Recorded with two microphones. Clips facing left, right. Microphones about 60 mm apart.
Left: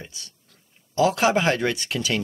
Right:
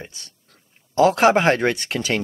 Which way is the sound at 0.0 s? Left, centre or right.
Right.